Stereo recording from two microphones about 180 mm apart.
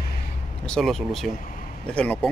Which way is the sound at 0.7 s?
Centre (ahead or behind).